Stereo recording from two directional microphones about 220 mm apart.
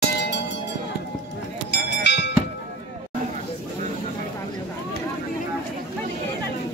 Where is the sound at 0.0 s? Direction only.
50° left (ahead or behind).